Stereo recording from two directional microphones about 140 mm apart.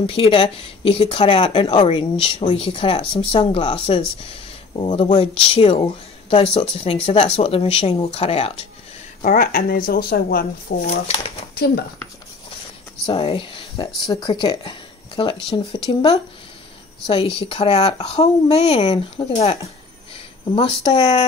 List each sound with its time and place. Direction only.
0.0 s speech: 40° left (ahead or behind)
9.2 s speech: 70° left (ahead or behind); by 10.8 s 90° left
13.0 s speech: 40° left (ahead or behind)
18.8 s speech: 35° left (ahead or behind)
19.3 s speech: 50° left (ahead or behind)
20.5 s speech: 35° left (ahead or behind)